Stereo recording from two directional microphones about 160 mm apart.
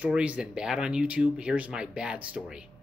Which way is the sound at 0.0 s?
10° right (ahead or behind).